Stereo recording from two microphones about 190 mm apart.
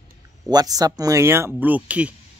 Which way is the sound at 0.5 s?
20° right (ahead or behind).